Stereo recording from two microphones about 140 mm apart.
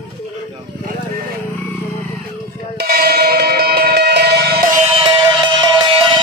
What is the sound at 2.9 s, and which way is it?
Cowbell, 90° right.